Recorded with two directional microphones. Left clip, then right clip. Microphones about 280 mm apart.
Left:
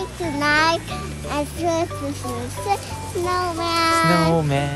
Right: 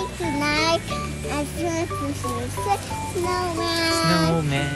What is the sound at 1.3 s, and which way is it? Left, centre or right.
Speech, left.